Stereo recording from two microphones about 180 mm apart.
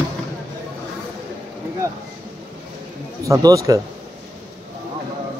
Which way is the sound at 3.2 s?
20° right (ahead or behind).